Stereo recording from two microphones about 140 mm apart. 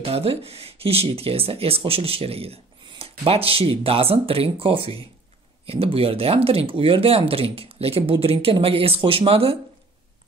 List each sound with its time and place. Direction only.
0.0 s speech: 45° right (ahead or behind)